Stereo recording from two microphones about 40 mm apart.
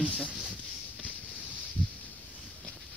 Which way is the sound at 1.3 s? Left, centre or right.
Left.